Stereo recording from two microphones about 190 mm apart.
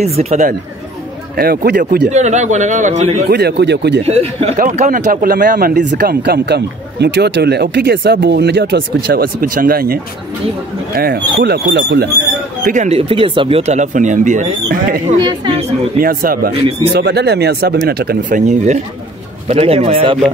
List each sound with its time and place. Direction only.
0.0 s speech: 35° right (ahead or behind)
1.3 s speech: 50° right (ahead or behind)
2.1 s speech: 40° right (ahead or behind)
3.3 s speech: 60° right (ahead or behind)
4.0 s speech: 35° right (ahead or behind)
4.6 s speech: 45° right (ahead or behind)
11.0 s speech: 55° right (ahead or behind)
12.6 s speech: 40° right (ahead or behind)
15.1 s a woman's voice: 25° right (ahead or behind)
16.0 s speech: 50° right (ahead or behind)
16.9 s speech: 60° right (ahead or behind)
19.4 s a woman's voice: 35° right (ahead or behind)